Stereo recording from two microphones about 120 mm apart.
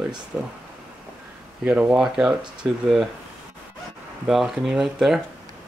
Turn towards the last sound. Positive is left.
turn(degrees=-5)  # may be behind; listen again after turning